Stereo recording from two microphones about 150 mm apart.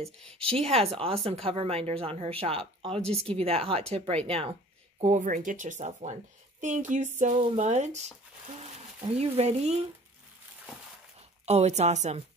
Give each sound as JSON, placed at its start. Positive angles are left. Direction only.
{"t": 0.5, "sound": "a woman's voice", "side_deg": -40}
{"t": 5.0, "sound": "speech", "side_deg": -55}
{"t": 9.1, "sound": "speech", "side_deg": -45}
{"t": 11.4, "sound": "speech", "side_deg": -45}